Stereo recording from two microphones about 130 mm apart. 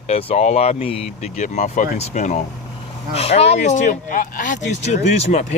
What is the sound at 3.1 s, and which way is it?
Speech, 50° left (ahead or behind).